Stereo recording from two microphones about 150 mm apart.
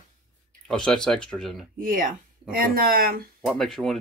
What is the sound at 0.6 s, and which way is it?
Speech, 5° left (ahead or behind).